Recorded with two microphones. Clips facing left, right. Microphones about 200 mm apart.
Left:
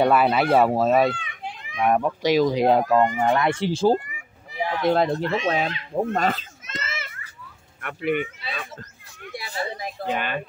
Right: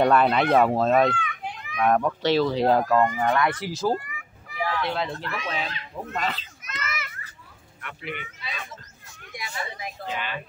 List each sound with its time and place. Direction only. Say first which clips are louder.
0.0 s speech: left 1 dB; 5° left (ahead or behind)
1.1 s children playing: right 3 dB; 25° left (ahead or behind)
1.8 s speech: left 1 dB; 10° left (ahead or behind)
4.8 s speech: left 9 dB; 40° left (ahead or behind)
5.2 s speech: left 9 dB; 25° left (ahead or behind)
5.9 s speech: left 8 dB; 50° left (ahead or behind)
6.6 s children playing: left 1 dB; 25° left (ahead or behind)
7.8 s speech: left 12 dB; 50° left (ahead or behind)
9.3 s a sound: left 5 dB; 35° left (ahead or behind)
10.0 s speech: left 6 dB; 55° left (ahead or behind)